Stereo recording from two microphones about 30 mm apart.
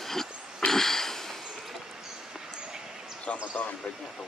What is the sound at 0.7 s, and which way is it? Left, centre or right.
Sniff, centre.